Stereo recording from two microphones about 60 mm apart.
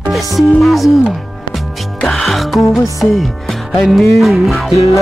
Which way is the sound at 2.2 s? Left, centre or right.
Centre.